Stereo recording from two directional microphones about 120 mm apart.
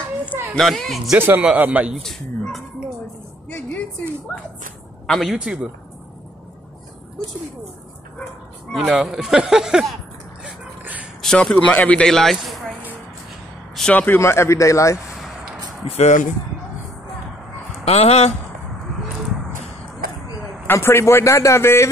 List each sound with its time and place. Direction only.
0.3 s a child's voice: 20° right (ahead or behind)
0.6 s speech: centre (ahead or behind)
1.1 s a man's voice: 15° right (ahead or behind)
2.0 s speech: centre (ahead or behind)
3.4 s a sound: 15° left (ahead or behind)
5.0 s speech: centre (ahead or behind)
8.7 s speech: 5° right (ahead or behind)
10.8 s a sound: 15° right (ahead or behind)
11.2 s a man's voice: 5° left (ahead or behind)
13.7 s a man's voice: 10° left (ahead or behind); by 15.0 s 25° left (ahead or behind)
16.0 s speech: 90° left
17.8 s speech: 60° left (ahead or behind)
20.6 s a man's voice: 20° left (ahead or behind)